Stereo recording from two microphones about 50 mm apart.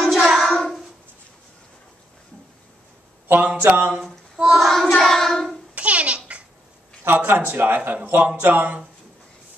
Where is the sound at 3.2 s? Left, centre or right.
Right.